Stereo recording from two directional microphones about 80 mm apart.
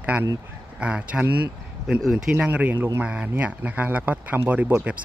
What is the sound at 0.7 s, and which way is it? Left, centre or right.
Speech, centre.